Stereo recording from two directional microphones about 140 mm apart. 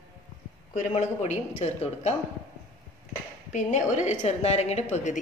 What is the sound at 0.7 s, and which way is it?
A man's voice, 55° left (ahead or behind).